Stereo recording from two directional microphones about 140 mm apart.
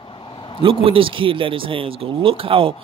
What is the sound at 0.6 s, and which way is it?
Speech, 40° right (ahead or behind).